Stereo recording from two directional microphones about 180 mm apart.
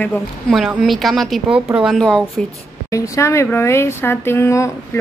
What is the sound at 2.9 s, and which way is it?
Speech, 15° left (ahead or behind).